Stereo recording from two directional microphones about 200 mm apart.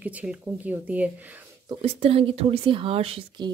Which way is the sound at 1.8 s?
30° right (ahead or behind).